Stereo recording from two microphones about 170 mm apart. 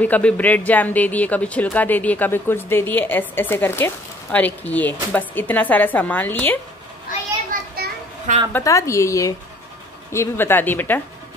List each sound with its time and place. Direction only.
0.0 s speech: 10° left (ahead or behind)
7.5 s a sound: 55° right (ahead or behind)
8.5 s speech: 20° left (ahead or behind)